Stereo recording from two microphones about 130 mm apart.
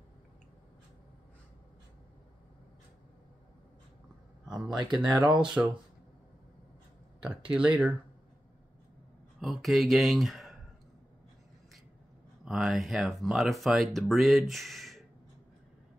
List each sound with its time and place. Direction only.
4.6 s speech: 35° right (ahead or behind)
5.4 s speech: 5° right (ahead or behind)
7.2 s speech: 10° right (ahead or behind)
9.4 s speech: centre (ahead or behind)
12.4 s speech: centre (ahead or behind)